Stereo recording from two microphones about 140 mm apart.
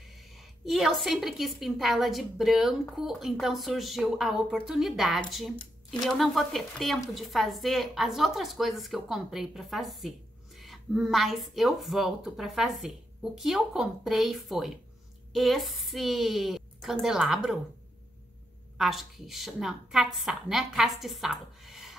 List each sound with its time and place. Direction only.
0.0 s a woman's voice: centre (ahead or behind)
18.8 s a woman's voice: centre (ahead or behind)